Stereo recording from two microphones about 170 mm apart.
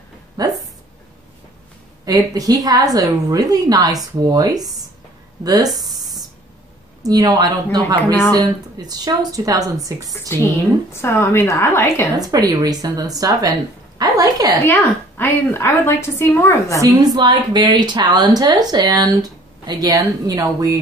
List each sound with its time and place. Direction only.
0.4 s speech: 20° right (ahead or behind)
2.0 s speech: 20° right (ahead or behind)
5.8 s a sound: 25° right (ahead or behind)
7.0 s speech: 25° right (ahead or behind)
10.3 s a woman's voice: 15° left (ahead or behind)
12.2 s speech: 20° right (ahead or behind)
14.7 s a woman's voice: 10° left (ahead or behind)
16.8 s speech: 25° right (ahead or behind)